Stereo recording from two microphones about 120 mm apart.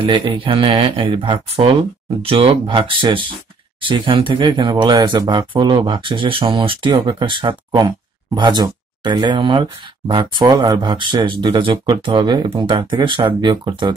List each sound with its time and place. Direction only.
0.0 s speech: 45° right (ahead or behind)